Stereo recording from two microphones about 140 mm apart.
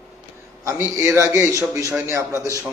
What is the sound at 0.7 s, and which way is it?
A man's voice, 20° right (ahead or behind).